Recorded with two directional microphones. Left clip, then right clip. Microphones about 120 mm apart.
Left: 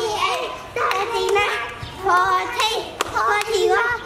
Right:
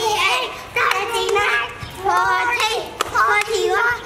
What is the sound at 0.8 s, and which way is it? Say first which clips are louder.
Music: even; centre (ahead or behind).